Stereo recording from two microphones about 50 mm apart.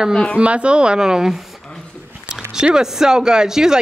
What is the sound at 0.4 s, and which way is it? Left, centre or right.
Speech, right.